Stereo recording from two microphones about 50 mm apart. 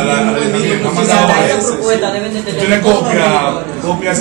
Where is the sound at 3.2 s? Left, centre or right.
Centre.